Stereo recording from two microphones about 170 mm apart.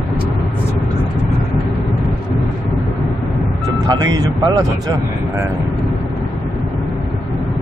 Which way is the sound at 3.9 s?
25° right (ahead or behind).